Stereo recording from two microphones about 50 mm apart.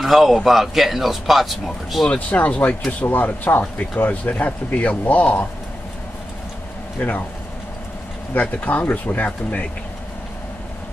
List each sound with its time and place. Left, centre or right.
0.0 s speech: centre
2.0 s speech: left
7.0 s speech: left
8.4 s speech: left